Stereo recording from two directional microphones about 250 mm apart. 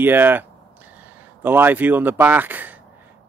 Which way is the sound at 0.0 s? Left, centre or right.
Centre.